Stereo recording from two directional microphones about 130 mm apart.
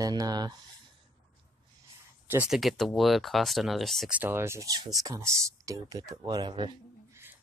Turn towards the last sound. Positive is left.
turn(degrees=-35)  # may be behind; listen again after turning